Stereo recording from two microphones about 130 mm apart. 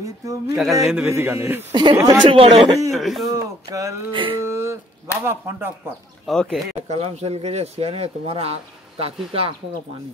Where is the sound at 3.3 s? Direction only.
25° right (ahead or behind).